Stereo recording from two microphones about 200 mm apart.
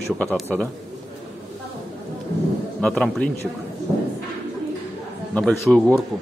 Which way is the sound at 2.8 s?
5° left (ahead or behind).